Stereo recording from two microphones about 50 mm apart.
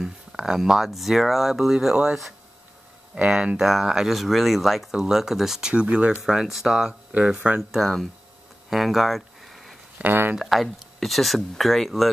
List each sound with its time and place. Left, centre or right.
0.0 s speech: centre
3.3 s speech: centre
5.7 s speech: right
6.2 s speech: centre
7.4 s speech: right
8.6 s a sound: centre
10.0 s speech: right
10.4 s speech: centre